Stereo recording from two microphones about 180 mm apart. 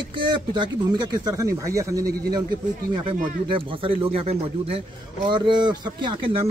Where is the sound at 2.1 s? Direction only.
60° right (ahead or behind).